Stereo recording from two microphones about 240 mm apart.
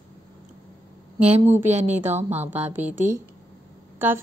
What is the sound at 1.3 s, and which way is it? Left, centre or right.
Speech, centre.